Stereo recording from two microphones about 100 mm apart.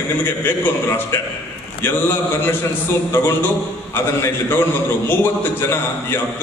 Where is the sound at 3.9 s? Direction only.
20° left (ahead or behind).